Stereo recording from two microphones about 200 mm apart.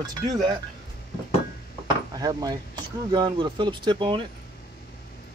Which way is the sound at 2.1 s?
20° right (ahead or behind).